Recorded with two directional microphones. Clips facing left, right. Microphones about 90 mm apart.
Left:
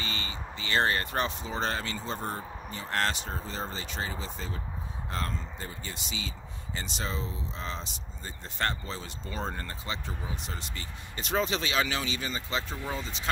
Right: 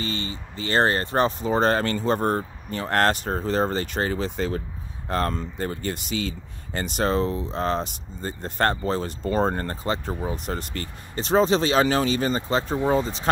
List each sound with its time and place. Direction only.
0.0 s speech: 35° right (ahead or behind); by 10.9 s 55° right (ahead or behind)
11.1 s speech: 35° right (ahead or behind)